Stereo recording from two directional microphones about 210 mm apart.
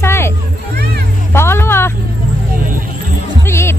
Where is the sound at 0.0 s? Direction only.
10° left (ahead or behind).